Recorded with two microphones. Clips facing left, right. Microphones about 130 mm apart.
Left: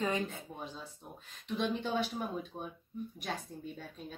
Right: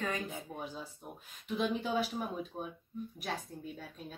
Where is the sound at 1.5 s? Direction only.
5° right (ahead or behind).